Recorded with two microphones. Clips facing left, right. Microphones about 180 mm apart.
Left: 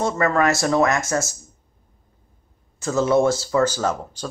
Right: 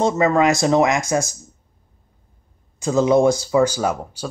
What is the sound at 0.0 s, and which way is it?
Speech, 20° right (ahead or behind).